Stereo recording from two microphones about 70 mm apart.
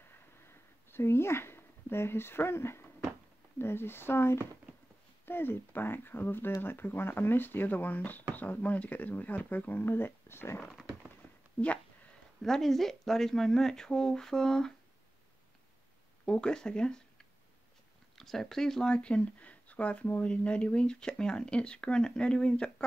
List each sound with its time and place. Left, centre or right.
0.9 s speech: left
10.6 s a sound: centre
12.4 s speech: centre
16.3 s speech: centre